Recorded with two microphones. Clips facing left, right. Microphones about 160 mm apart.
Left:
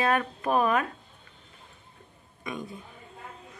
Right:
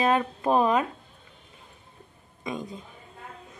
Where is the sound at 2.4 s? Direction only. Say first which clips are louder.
Right 3 dB; 20° right (ahead or behind).